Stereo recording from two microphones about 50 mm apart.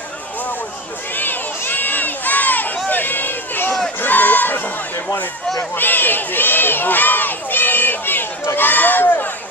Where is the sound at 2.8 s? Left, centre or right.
Left.